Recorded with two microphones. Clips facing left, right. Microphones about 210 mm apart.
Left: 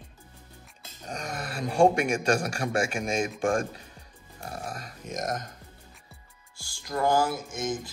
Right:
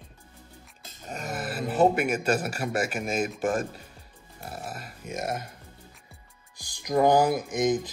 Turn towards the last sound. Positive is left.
turn(degrees=-20)  # may be behind; listen again after turning